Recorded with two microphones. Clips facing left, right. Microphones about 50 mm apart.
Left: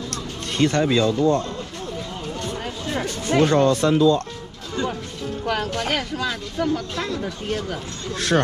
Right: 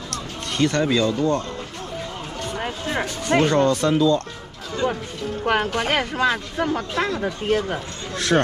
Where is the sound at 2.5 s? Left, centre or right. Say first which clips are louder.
Right 5 dB; right.